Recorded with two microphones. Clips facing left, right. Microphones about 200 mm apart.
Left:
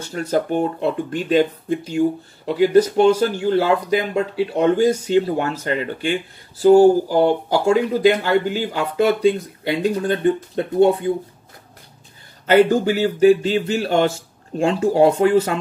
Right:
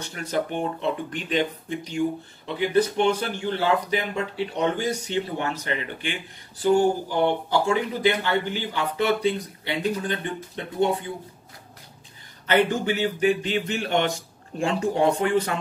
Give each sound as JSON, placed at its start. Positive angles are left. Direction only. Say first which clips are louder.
{"t": 0.1, "sound": "speech", "louder": "left 7 dB", "side_deg": 40}
{"t": 12.4, "sound": "speech", "louder": "left 7 dB", "side_deg": 35}